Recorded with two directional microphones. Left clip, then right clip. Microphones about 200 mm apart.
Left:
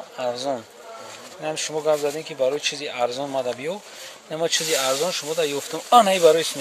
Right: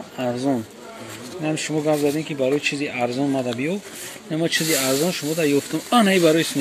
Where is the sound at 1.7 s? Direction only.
15° left (ahead or behind).